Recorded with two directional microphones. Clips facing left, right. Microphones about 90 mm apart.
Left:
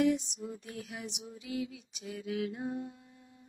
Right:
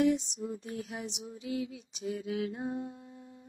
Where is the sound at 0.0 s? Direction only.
25° right (ahead or behind).